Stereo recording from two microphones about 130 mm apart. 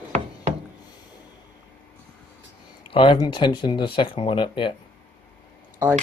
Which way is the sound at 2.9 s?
40° left (ahead or behind).